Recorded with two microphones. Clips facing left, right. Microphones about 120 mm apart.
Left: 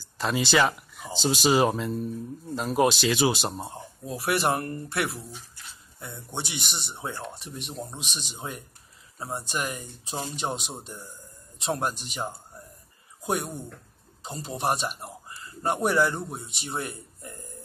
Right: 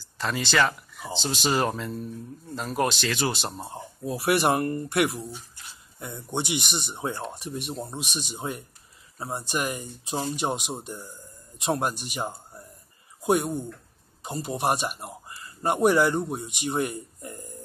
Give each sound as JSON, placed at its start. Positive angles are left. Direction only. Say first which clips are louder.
{"t": 0.2, "sound": "speech", "louder": "left 1 dB", "side_deg": 10}
{"t": 4.0, "sound": "speech", "louder": "right 3 dB", "side_deg": -10}